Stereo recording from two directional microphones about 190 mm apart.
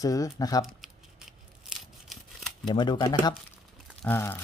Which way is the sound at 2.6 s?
20° left (ahead or behind).